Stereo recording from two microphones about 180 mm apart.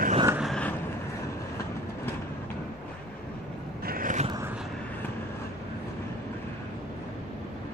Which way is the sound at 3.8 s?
50° right (ahead or behind).